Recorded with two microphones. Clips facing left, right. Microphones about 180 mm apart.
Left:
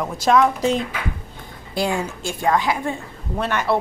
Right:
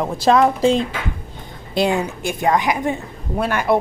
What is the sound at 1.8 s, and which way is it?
A woman's voice, 20° right (ahead or behind).